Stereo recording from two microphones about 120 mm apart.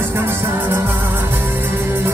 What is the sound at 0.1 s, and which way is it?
Music, 20° right (ahead or behind).